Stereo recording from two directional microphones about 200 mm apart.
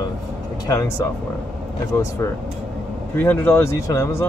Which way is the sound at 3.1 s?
10° left (ahead or behind).